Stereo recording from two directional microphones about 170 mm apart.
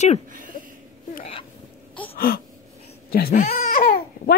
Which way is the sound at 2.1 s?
60° left (ahead or behind).